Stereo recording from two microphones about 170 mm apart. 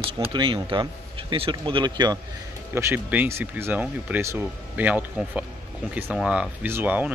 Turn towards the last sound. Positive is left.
turn(degrees=-10)  # may be behind; listen again after turning